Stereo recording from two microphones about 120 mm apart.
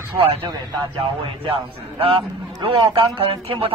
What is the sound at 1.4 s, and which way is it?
A man's voice, 50° right (ahead or behind).